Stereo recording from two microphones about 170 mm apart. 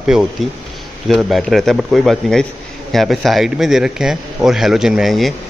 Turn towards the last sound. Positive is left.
turn(degrees=0)  # may be behind; listen again after turning